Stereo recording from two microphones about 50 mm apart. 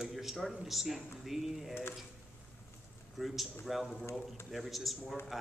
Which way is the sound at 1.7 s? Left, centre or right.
Left.